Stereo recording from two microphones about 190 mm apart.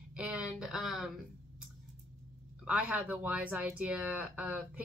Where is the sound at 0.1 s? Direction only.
5° right (ahead or behind).